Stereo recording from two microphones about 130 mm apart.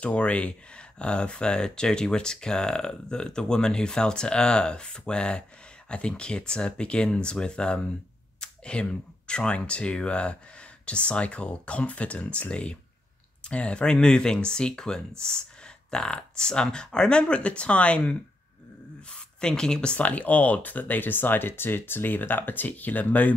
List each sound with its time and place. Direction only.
0.0 s speech: 10° left (ahead or behind)
8.4 s a sound: 10° left (ahead or behind)
9.3 s speech: 10° left (ahead or behind)